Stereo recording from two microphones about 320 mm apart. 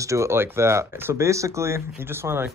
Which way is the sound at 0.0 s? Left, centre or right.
Centre.